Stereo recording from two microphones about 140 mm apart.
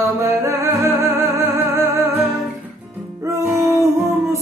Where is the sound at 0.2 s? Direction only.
20° right (ahead or behind).